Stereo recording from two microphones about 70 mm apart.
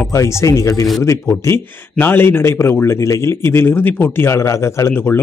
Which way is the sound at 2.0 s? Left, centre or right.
Left.